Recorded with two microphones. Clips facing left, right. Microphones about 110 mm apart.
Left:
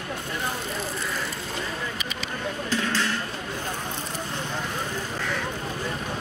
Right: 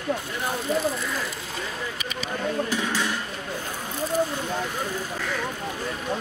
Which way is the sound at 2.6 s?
15° right (ahead or behind).